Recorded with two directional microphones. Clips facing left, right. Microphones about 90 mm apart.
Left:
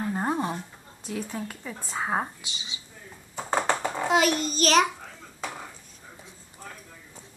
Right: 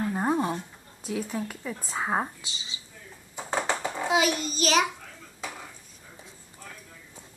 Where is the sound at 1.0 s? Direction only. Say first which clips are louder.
Right 2 dB; 5° right (ahead or behind).